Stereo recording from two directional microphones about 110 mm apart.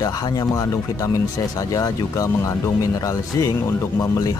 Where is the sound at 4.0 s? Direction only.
30° left (ahead or behind).